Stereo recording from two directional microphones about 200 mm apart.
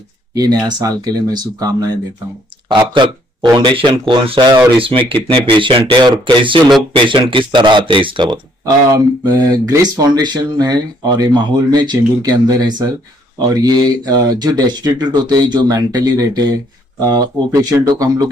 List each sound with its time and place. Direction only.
0.3 s speech: 20° right (ahead or behind)